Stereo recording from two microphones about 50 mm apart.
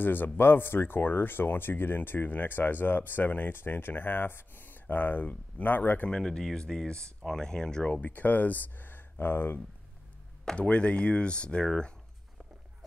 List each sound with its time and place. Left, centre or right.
0.0 s speech: left
6.0 s speech: centre
7.9 s speech: left
10.5 s speech: left